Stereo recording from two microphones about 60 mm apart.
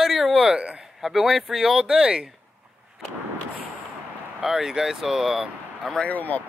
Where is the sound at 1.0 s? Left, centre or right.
Centre.